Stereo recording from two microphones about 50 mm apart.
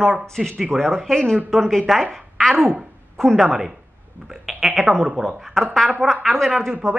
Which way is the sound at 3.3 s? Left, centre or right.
Centre.